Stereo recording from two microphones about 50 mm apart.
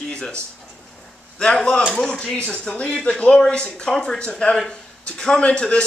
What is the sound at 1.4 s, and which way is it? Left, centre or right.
A man's voice, centre.